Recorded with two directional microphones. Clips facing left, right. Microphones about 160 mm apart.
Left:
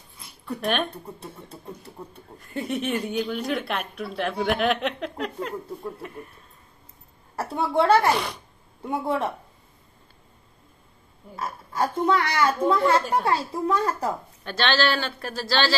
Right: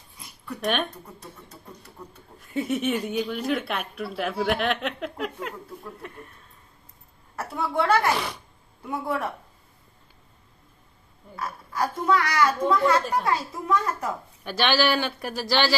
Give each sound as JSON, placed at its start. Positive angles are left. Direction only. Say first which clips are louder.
{"t": 0.8, "sound": "a woman's voice", "louder": "left 4 dB", "side_deg": 30}
{"t": 2.3, "sound": "speech", "louder": "right 2 dB", "side_deg": 0}
{"t": 7.3, "sound": "a woman's voice", "louder": "left 3 dB", "side_deg": 30}
{"t": 8.1, "sound": "speech", "louder": "left 2 dB", "side_deg": 0}
{"t": 8.8, "sound": "a woman's voice", "louder": "left 3 dB", "side_deg": 25}
{"t": 11.3, "sound": "a woman's voice", "louder": "left 2 dB", "side_deg": 25}
{"t": 14.4, "sound": "speech", "louder": "right 1 dB", "side_deg": -10}